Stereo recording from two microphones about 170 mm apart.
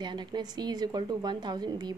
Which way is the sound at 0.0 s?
25° right (ahead or behind).